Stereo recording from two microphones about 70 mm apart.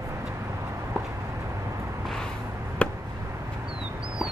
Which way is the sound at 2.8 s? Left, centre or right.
Centre.